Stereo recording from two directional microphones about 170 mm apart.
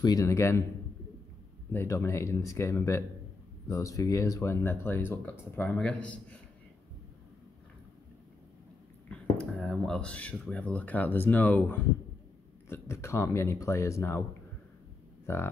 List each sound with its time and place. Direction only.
0.0 s a man's voice: 20° left (ahead or behind)
1.7 s speech: 15° left (ahead or behind)
9.1 s speech: 5° left (ahead or behind)
15.2 s speech: 15° left (ahead or behind)